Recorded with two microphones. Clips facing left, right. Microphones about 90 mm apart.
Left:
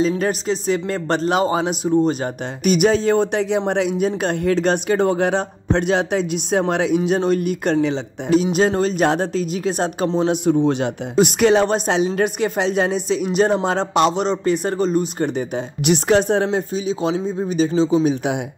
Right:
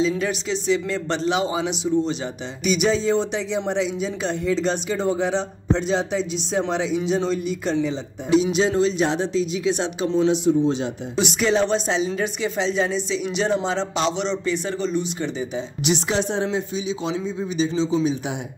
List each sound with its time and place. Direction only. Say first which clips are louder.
0.0 s a man's voice: left 3 dB; 45° left (ahead or behind); by 18.4 s 60° left (ahead or behind)